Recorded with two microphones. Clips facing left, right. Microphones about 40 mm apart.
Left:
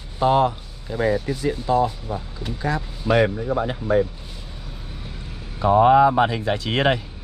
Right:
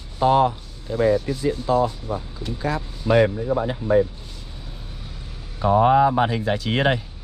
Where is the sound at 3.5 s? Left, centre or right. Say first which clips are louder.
Right 1 dB; left.